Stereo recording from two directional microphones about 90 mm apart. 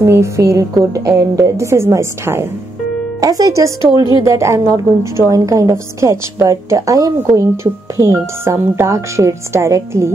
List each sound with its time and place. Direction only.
0.0 s a woman's voice: 30° right (ahead or behind)
3.2 s a woman's voice: 45° right (ahead or behind)